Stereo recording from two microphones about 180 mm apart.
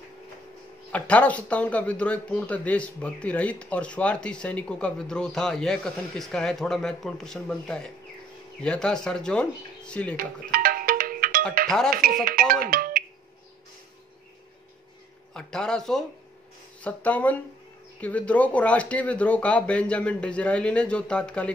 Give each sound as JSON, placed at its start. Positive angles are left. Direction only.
{"t": 0.9, "sound": "a man's voice", "side_deg": 10}
{"t": 10.1, "sound": "music", "side_deg": -55}
{"t": 15.3, "sound": "a man's voice", "side_deg": 5}